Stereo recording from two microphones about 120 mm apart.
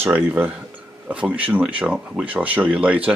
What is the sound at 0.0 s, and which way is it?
Speech, 20° right (ahead or behind).